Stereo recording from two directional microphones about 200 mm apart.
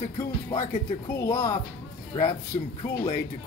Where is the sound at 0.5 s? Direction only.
25° left (ahead or behind).